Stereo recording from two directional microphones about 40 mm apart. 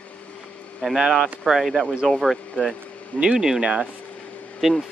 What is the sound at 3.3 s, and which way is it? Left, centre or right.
Speech, centre.